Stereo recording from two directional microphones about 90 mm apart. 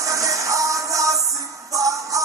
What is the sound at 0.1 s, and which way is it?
Music, 35° right (ahead or behind).